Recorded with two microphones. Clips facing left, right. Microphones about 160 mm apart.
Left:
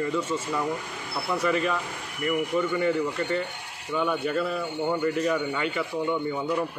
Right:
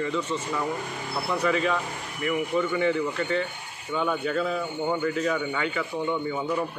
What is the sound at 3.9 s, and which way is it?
A man's voice, 5° left (ahead or behind).